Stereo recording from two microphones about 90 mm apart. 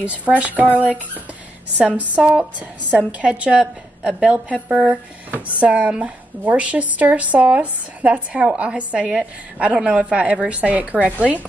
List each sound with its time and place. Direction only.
0.0 s a woman's voice: 15° right (ahead or behind)